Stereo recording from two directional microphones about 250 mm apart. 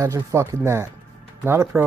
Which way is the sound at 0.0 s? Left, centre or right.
Centre.